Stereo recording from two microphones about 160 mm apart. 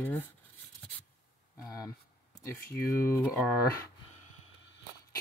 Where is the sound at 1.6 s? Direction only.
25° left (ahead or behind).